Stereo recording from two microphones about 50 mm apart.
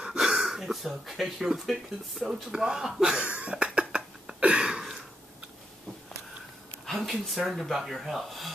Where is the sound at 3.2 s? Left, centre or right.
Right.